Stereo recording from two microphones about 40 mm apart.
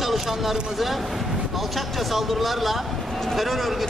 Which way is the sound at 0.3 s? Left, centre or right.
Centre.